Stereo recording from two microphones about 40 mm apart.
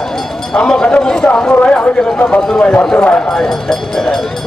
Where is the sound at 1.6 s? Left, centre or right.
Left.